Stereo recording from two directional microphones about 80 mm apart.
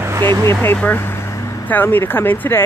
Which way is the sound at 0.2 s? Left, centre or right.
Right.